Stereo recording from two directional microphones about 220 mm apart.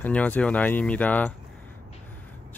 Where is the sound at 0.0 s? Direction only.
5° left (ahead or behind).